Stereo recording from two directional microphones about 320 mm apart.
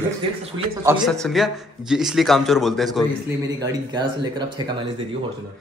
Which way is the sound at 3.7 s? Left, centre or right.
Centre.